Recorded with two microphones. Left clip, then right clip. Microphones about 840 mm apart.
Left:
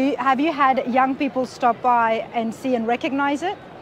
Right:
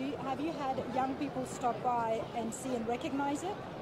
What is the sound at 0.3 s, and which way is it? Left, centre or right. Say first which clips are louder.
A woman's voice: left 19 dB; left.